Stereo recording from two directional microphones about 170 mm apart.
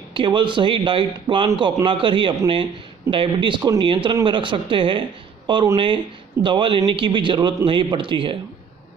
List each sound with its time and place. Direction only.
0.1 s a man's voice: 30° right (ahead or behind)